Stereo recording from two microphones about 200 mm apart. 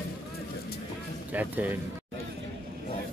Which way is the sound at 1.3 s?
10° right (ahead or behind).